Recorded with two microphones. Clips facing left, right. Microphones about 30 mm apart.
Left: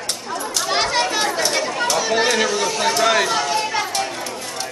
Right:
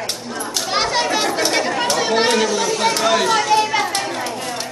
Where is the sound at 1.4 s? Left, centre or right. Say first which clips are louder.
Right 2 dB; centre.